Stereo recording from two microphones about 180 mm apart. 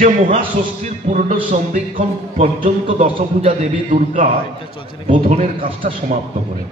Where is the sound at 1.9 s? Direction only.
30° right (ahead or behind).